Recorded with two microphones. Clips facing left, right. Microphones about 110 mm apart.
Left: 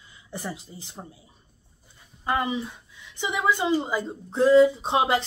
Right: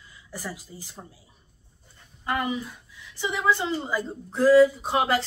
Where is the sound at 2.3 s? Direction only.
25° left (ahead or behind).